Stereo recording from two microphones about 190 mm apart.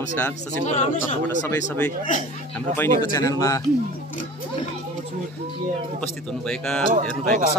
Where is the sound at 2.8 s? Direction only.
15° left (ahead or behind).